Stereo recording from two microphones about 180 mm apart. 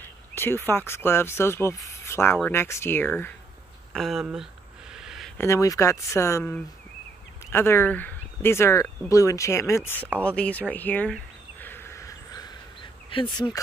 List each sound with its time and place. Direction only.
0.0 s speech: 10° left (ahead or behind)
3.9 s speech: centre (ahead or behind)
4.9 s a sound: centre (ahead or behind)
5.4 s speech: 15° left (ahead or behind)
10.2 s a sound: 5° left (ahead or behind)
13.1 s speech: 25° left (ahead or behind)